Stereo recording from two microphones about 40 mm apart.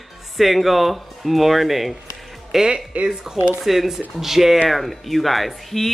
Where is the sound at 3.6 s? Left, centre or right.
Centre.